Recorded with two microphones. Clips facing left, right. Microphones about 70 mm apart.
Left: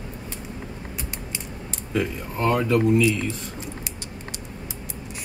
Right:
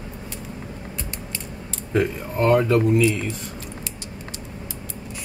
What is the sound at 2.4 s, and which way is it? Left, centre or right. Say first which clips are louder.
Speech: right 4 dB; centre.